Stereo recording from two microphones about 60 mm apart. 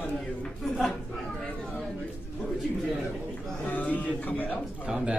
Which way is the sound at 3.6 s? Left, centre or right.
Left.